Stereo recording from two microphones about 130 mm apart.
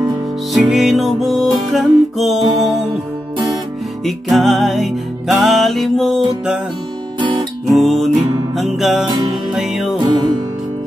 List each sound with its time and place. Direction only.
0.5 s music: centre (ahead or behind)
4.0 s music: centre (ahead or behind)
7.2 s guitar: 40° right (ahead or behind)
7.7 s music: centre (ahead or behind)
9.0 s music: 35° right (ahead or behind)
9.5 s music: 5° right (ahead or behind)
9.9 s music: 35° right (ahead or behind)